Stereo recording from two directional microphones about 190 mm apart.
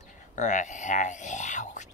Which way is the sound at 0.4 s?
40° left (ahead or behind).